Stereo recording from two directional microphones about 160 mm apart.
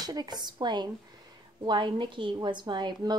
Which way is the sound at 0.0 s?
25° right (ahead or behind).